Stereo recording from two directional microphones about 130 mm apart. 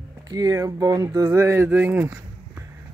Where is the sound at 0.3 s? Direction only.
30° right (ahead or behind).